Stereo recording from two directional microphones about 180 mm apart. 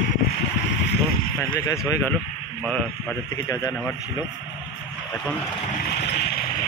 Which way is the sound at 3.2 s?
20° left (ahead or behind).